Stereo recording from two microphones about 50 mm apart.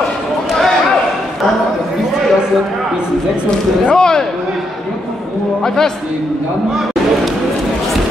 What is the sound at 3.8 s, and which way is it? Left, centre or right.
Speech, centre.